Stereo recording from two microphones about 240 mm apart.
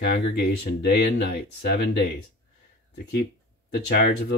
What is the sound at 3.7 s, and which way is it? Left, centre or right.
Speech, left.